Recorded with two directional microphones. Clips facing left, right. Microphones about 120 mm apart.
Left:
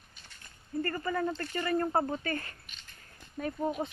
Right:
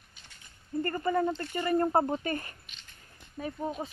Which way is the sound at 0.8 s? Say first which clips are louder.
Right 4 dB; 25° right (ahead or behind).